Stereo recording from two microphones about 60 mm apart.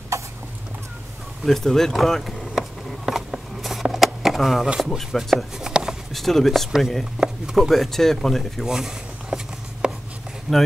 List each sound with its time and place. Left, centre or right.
1.4 s speech: centre
3.1 s a sound: centre
4.8 s speech: centre
5.6 s a sound: centre
6.1 s speech: centre
8.6 s rub: centre
10.5 s speech: centre